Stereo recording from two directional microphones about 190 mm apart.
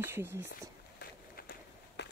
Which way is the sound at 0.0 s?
10° right (ahead or behind).